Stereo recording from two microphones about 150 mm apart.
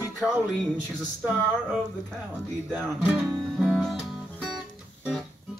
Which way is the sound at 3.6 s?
Centre (ahead or behind).